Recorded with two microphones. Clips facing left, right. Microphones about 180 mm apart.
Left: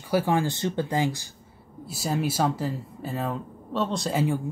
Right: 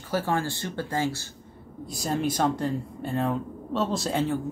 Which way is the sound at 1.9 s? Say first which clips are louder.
Even; 5° left (ahead or behind).